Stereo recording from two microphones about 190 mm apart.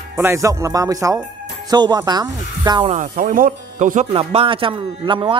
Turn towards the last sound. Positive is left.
turn(degrees=-25)  # may be behind; listen again after turning